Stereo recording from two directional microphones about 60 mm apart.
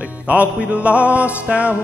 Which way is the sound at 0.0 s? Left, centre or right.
Right.